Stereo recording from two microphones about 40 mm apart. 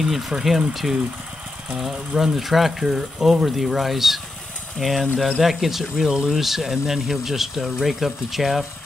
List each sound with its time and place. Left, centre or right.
0.0 s speech: centre
6.0 s speech: right
6.3 s speech: centre